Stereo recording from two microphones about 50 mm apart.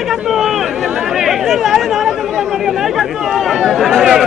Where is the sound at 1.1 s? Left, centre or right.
Centre.